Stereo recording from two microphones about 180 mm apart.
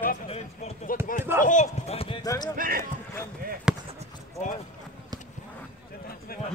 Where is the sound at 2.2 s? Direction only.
20° left (ahead or behind).